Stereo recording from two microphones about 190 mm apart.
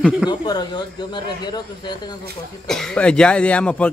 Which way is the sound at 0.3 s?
20° left (ahead or behind).